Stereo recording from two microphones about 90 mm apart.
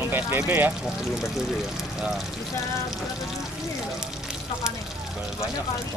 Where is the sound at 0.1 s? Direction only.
25° right (ahead or behind).